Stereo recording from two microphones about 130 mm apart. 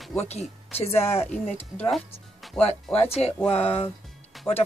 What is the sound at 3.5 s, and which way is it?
Speech, 50° left (ahead or behind).